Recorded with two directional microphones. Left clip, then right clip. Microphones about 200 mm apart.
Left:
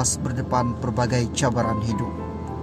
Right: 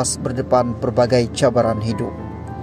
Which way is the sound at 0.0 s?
20° right (ahead or behind).